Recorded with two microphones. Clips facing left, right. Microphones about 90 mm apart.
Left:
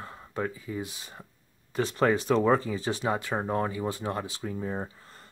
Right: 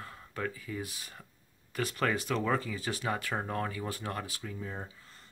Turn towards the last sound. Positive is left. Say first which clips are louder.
# left 7 dB
turn(degrees=35)  # may be behind; listen again after turning